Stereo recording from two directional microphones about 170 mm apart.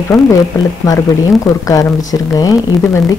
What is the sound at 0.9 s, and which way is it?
A woman's voice, 20° left (ahead or behind).